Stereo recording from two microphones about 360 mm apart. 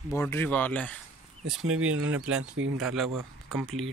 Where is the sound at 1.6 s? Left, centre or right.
Right.